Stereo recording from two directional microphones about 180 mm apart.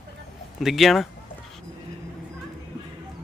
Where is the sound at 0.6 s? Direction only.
Centre (ahead or behind).